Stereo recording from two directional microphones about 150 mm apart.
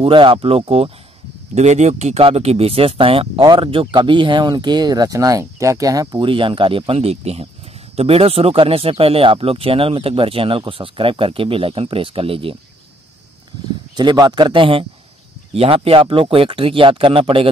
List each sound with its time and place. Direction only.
0.0 s speech: 35° right (ahead or behind)
13.9 s a man's voice: 30° right (ahead or behind)